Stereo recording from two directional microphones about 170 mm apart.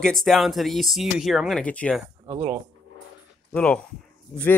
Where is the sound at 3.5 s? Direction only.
10° left (ahead or behind).